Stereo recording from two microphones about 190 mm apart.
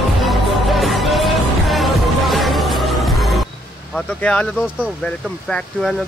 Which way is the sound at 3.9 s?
5° left (ahead or behind).